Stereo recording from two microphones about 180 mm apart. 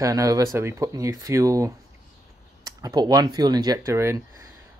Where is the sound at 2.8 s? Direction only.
20° right (ahead or behind).